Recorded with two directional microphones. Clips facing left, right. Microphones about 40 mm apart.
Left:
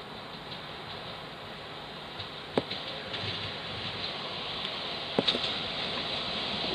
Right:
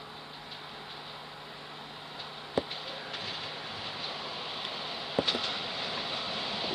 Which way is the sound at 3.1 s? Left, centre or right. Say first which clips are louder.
Left 3 dB; left.